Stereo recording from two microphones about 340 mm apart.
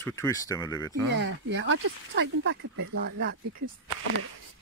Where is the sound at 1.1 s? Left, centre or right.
Right.